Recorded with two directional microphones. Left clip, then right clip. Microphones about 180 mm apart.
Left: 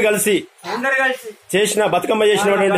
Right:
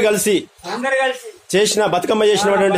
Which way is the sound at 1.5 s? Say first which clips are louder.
Right 1 dB; 15° right (ahead or behind).